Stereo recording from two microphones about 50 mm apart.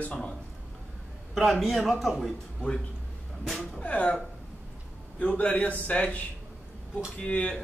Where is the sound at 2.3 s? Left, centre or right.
Centre.